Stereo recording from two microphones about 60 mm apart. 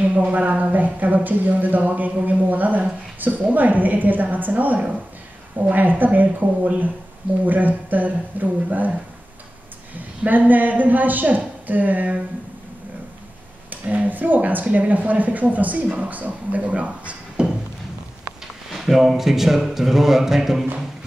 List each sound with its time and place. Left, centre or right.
0.0 s speech: right
10.2 s speech: right
13.7 s speech: right
18.7 s a man's voice: centre